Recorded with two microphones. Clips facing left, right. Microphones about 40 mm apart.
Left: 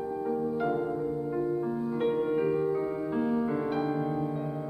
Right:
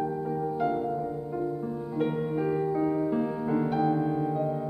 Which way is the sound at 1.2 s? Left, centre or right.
Centre.